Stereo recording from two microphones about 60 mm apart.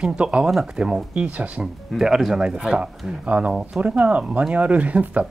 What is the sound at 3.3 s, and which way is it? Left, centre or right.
Speech, right.